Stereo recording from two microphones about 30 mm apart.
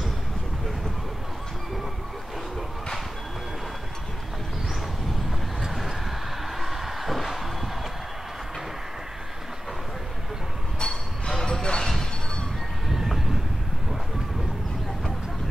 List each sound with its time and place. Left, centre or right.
5.7 s vehicle: centre
6.6 s a sound: centre
10.8 s music: centre
11.6 s music: left
12.9 s train: centre